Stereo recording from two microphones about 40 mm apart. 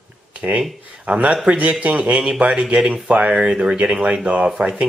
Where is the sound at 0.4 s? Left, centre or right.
Right.